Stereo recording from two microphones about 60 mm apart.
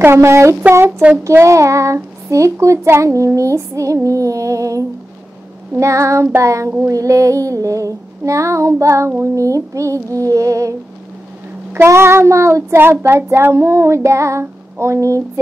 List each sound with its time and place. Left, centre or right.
0.0 s speech: right
11.7 s speech: right
14.4 s a sound: right